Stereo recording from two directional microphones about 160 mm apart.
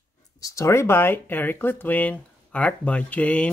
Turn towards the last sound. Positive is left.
turn(degrees=10)  # may be behind; listen again after turning